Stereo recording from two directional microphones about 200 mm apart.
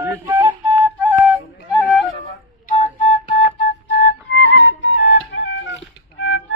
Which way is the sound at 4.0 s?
65° left (ahead or behind).